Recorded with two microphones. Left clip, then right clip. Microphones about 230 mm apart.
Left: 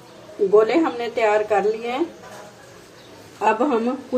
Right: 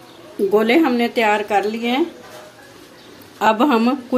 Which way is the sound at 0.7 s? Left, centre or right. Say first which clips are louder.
Right 5 dB; right.